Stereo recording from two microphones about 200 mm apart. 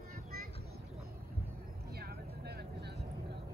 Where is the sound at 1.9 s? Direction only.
50° right (ahead or behind).